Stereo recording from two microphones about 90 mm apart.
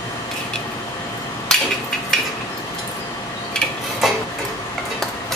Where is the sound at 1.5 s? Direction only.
10° left (ahead or behind).